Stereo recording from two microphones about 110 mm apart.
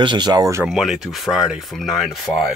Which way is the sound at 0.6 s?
5° right (ahead or behind).